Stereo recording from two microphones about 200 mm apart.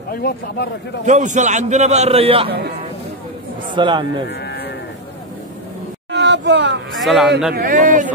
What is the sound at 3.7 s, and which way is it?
Speech, 25° right (ahead or behind).